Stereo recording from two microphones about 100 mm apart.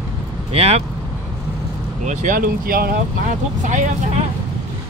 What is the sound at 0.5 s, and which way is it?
Speech, 90° right.